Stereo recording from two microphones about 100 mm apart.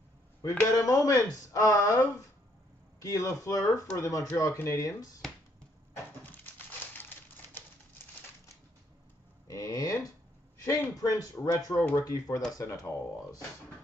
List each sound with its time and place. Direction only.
0.4 s speech: 35° left (ahead or behind)
7.0 s typewriter: 20° left (ahead or behind)
9.5 s a sound: 35° left (ahead or behind)
10.6 s speech: 35° left (ahead or behind)